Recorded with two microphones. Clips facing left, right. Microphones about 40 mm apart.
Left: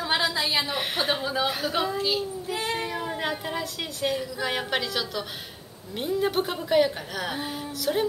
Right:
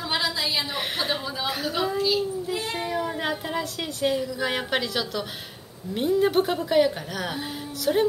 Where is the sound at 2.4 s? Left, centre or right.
Centre.